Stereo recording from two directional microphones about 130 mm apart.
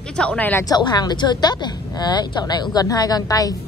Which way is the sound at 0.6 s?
30° left (ahead or behind).